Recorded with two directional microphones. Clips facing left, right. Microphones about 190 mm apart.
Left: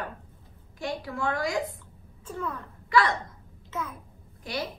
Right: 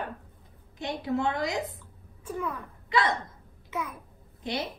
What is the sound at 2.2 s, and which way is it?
Speech, 10° right (ahead or behind).